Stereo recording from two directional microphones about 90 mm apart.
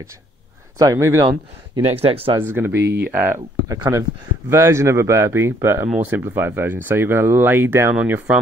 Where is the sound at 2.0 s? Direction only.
90° right.